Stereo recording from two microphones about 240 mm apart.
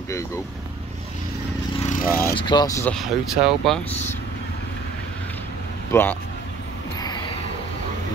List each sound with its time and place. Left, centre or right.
1.8 s vehicle: left
2.3 s speech: centre
5.9 s speech: centre